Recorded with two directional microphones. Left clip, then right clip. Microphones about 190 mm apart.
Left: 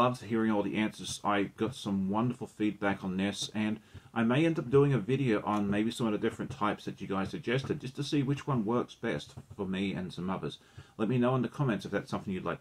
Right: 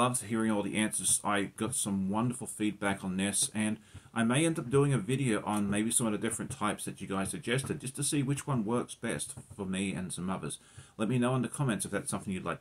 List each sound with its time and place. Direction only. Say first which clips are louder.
0.0 s speech: left 2 dB; 20° right (ahead or behind)